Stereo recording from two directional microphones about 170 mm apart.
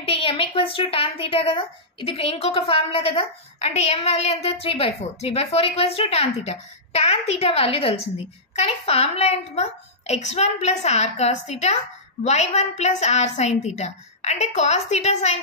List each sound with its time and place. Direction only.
0.0 s a woman's voice: 30° left (ahead or behind)